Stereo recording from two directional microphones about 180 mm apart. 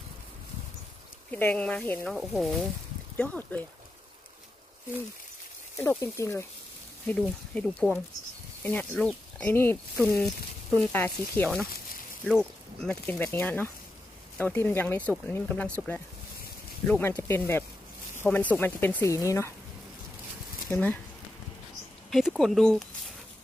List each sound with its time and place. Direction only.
1.3 s speech: 10° left (ahead or behind)
5.8 s speech: 15° left (ahead or behind)
16.8 s speech: 10° left (ahead or behind)
20.6 s speech: 10° left (ahead or behind)
22.1 s speech: centre (ahead or behind)